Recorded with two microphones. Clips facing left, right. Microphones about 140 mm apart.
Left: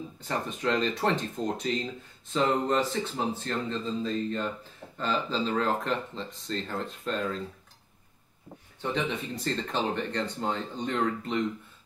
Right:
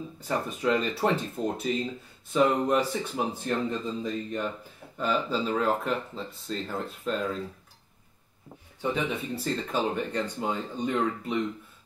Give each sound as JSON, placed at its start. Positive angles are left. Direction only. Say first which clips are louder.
{"t": 0.2, "sound": "speech", "louder": "right 2 dB", "side_deg": -10}
{"t": 8.8, "sound": "speech", "louder": "right 1 dB", "side_deg": -10}